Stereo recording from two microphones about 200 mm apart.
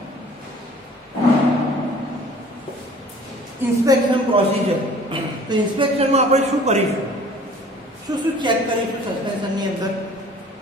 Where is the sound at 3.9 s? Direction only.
25° right (ahead or behind).